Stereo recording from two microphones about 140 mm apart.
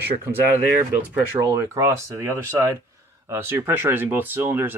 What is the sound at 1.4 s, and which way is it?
Speech, 25° right (ahead or behind).